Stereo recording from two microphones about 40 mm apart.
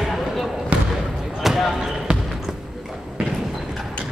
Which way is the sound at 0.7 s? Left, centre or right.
Right.